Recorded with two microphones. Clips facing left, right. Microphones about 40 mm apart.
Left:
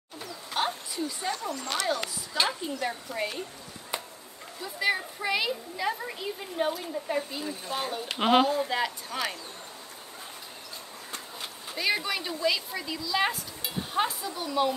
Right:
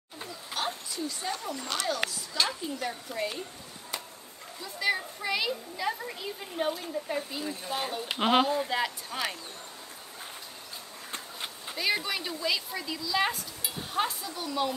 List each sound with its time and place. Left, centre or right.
0.6 s a sound: centre
1.7 s a woman's voice: centre
4.6 s a woman's voice: centre
11.7 s a woman's voice: centre